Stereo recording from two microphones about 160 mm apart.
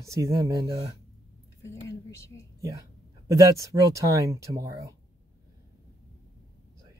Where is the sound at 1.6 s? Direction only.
20° left (ahead or behind).